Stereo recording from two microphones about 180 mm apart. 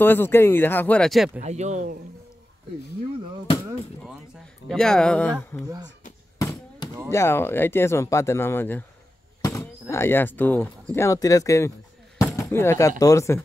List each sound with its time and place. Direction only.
0.0 s speech: 10° left (ahead or behind)
1.4 s speech: 40° right (ahead or behind)
4.6 s speech: 5° left (ahead or behind)
6.3 s a sound: 20° left (ahead or behind)
7.1 s speech: 15° left (ahead or behind)
12.2 s a sound: 15° left (ahead or behind)
13.0 s speech: 15° left (ahead or behind)